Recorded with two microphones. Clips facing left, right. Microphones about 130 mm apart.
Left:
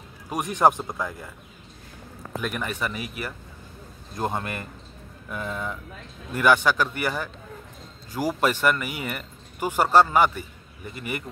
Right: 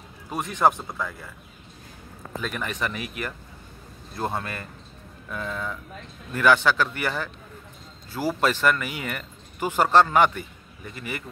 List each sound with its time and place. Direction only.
0.3 s speech: 15° left (ahead or behind)
2.4 s speech: 10° left (ahead or behind)